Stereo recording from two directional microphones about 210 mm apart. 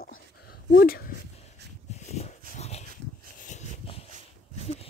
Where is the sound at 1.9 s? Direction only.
30° left (ahead or behind).